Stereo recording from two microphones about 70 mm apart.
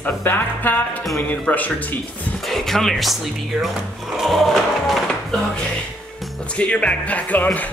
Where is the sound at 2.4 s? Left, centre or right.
Centre.